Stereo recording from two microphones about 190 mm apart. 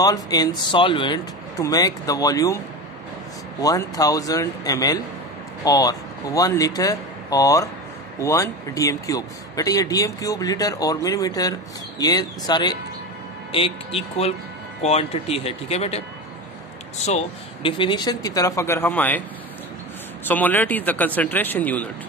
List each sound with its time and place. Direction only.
0.0 s speech: 20° left (ahead or behind)
3.6 s speech: 20° left (ahead or behind)
17.0 s speech: 35° left (ahead or behind); by 19.2 s 10° left (ahead or behind)
20.2 s speech: 10° left (ahead or behind)